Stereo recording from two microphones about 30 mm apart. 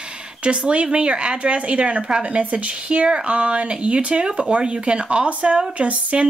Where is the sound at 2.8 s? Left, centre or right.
Right.